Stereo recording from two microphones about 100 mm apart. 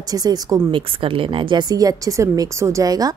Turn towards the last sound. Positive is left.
turn(degrees=-40)  # may be behind; listen again after turning